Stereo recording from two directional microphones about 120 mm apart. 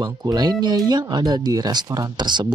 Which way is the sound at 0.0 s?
30° right (ahead or behind).